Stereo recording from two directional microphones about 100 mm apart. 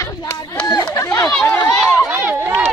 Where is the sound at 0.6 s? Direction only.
45° left (ahead or behind).